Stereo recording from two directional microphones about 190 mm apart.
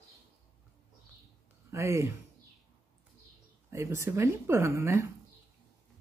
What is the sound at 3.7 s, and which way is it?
Speech, 15° right (ahead or behind).